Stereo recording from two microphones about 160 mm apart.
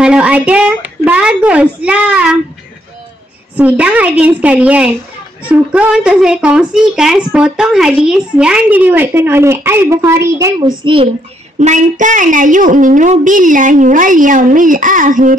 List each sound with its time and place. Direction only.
0.0 s a sound: 5° right (ahead or behind)
3.5 s a woman's voice: 10° right (ahead or behind)
10.8 s a child's voice: 30° right (ahead or behind)
11.6 s a woman's voice: 50° right (ahead or behind)